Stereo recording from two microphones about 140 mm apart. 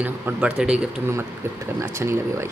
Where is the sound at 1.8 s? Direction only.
20° right (ahead or behind).